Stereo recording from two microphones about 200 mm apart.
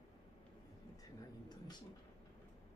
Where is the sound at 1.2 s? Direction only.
20° left (ahead or behind).